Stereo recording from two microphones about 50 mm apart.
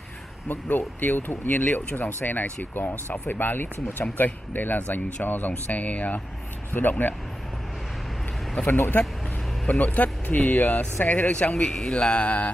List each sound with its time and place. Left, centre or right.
0.5 s speech: left
8.7 s speech: left
9.7 s speech: left